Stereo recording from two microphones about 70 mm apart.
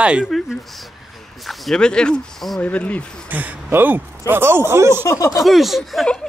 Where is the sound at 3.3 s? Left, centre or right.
Right.